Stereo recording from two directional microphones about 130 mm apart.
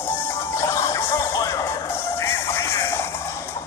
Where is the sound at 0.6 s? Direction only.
25° left (ahead or behind).